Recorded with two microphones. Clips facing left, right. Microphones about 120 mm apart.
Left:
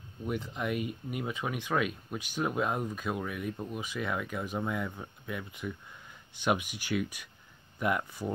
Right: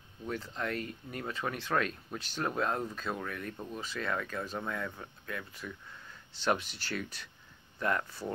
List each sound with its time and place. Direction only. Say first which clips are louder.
0.2 s speech: left 3 dB; 15° left (ahead or behind)